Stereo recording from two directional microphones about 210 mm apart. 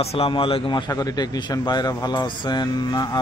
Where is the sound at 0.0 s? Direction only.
30° left (ahead or behind).